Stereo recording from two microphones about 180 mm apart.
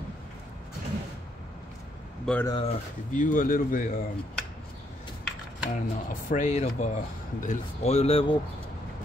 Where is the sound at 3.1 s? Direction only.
50° left (ahead or behind).